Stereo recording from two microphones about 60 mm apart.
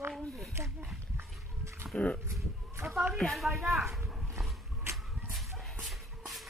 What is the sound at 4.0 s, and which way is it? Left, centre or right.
Dog, centre.